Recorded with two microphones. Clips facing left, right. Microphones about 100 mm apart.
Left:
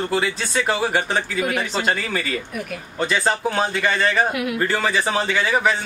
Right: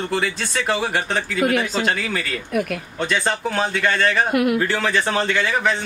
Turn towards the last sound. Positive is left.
turn(degrees=5)  # may be behind; listen again after turning